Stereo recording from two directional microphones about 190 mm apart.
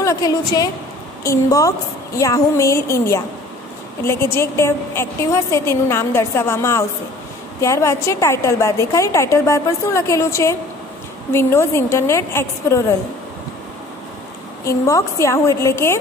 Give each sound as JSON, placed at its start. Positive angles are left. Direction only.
{"t": 0.0, "sound": "a woman's voice", "side_deg": 15}
{"t": 14.6, "sound": "a woman's voice", "side_deg": 15}